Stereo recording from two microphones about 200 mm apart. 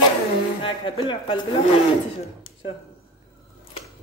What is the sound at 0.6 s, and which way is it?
Speech, 25° left (ahead or behind).